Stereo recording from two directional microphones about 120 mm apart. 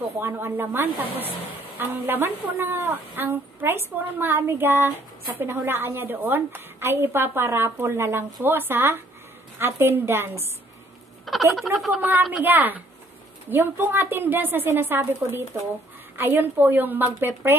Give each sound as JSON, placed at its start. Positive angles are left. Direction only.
{"t": 0.2, "sound": "a woman's voice", "side_deg": -15}
{"t": 11.3, "sound": "a sound", "side_deg": 0}
{"t": 11.7, "sound": "a woman's voice", "side_deg": 0}
{"t": 12.0, "sound": "a woman's voice", "side_deg": -15}